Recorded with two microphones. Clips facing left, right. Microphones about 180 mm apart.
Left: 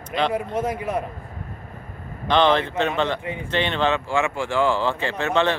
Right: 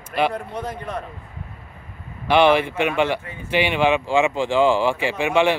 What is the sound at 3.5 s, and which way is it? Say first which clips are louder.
Speech: right 4 dB; 10° right (ahead or behind).